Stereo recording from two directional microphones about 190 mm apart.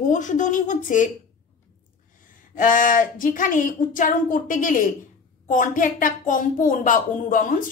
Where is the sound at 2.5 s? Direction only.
45° left (ahead or behind).